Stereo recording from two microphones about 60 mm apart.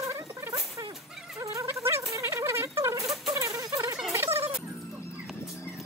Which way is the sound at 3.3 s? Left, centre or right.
Right.